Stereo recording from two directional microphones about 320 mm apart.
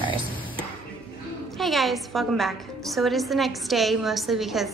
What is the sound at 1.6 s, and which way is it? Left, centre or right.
A woman's voice, centre.